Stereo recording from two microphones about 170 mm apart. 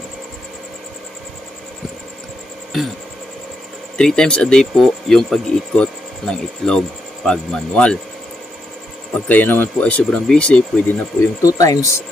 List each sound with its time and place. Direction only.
4.0 s speech: 5° left (ahead or behind)
9.3 s speech: 10° left (ahead or behind)
11.4 s speech: 20° left (ahead or behind)